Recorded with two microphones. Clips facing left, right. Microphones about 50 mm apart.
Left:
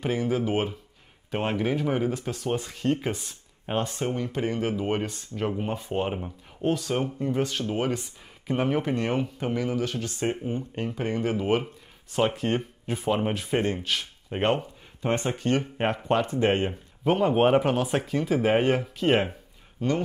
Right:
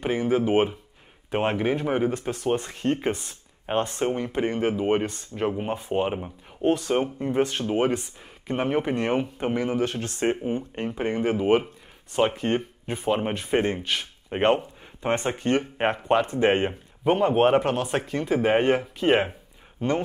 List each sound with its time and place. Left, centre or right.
0.0 s speech: centre
2.0 s speech: centre; by 3.1 s right
3.3 s a sound: centre
4.0 s speech: right
6.1 s speech: centre
6.7 s speech: right
8.5 s speech: centre; by 10.3 s right
10.3 s speech: centre
17.0 s speech: centre
19.8 s speech: right